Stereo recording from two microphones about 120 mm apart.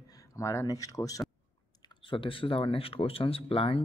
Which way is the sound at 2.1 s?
45° left (ahead or behind).